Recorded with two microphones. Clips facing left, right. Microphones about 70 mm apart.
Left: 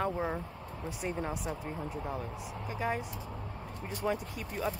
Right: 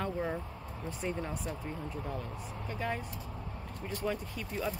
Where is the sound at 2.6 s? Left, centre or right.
Centre.